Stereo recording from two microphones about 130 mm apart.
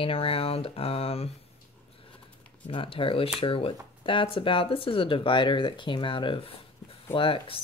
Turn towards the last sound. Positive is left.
turn(degrees=45)  # may be behind; listen again after turning